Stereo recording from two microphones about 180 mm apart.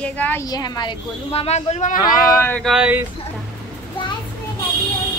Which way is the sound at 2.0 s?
15° left (ahead or behind).